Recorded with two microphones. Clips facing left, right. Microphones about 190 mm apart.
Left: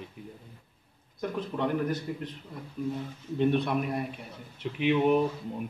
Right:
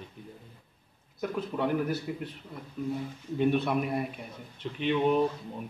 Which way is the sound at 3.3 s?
Centre (ahead or behind).